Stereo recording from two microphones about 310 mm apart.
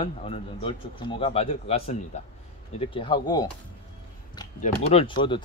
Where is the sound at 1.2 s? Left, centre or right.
Centre.